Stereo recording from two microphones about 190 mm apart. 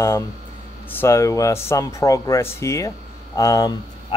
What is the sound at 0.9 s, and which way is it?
Speech, 15° left (ahead or behind).